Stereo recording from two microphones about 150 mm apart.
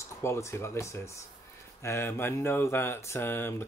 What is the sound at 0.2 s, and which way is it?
Speech, 20° left (ahead or behind).